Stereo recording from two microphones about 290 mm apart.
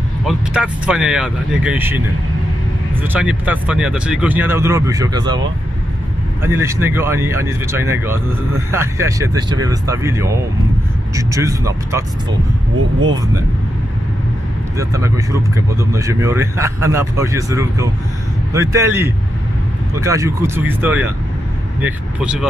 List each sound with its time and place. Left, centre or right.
0.3 s speech: centre
3.0 s speech: centre
6.4 s speech: centre
14.8 s speech: centre
20.0 s speech: centre